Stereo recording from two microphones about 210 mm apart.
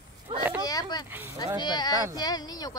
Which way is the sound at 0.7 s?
20° left (ahead or behind).